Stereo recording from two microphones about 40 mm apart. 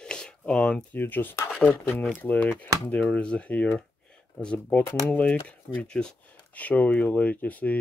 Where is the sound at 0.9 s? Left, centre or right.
Left.